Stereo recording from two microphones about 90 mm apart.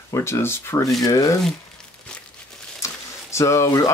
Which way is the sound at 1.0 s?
40° left (ahead or behind).